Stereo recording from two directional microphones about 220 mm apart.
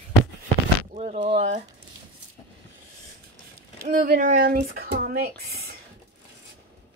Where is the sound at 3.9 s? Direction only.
35° right (ahead or behind).